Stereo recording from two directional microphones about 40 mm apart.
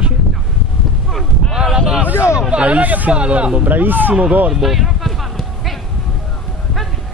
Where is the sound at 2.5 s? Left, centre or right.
Right.